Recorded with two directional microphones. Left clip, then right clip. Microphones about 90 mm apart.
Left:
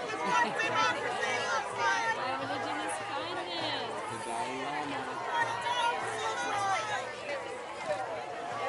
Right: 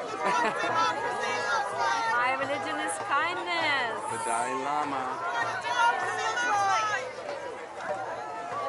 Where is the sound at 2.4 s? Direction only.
35° right (ahead or behind).